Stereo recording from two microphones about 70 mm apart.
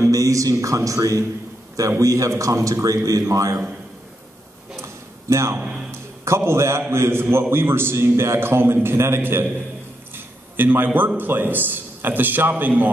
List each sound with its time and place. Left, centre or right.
0.0 s a man's voice: right
4.8 s a sound: right
5.6 s music: centre
5.9 s music: right
6.9 s a man's voice: right